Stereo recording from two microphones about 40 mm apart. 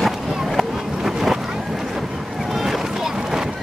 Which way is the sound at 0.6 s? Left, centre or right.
Centre.